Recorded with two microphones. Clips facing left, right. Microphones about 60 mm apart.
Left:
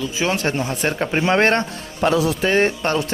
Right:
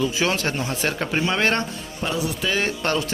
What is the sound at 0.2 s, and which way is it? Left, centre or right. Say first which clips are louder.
Speech: left 2 dB; centre.